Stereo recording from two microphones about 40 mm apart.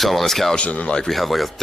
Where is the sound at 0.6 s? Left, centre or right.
Left.